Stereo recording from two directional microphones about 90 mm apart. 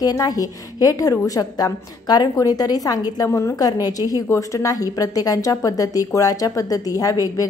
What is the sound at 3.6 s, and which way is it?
A woman's voice, 45° left (ahead or behind).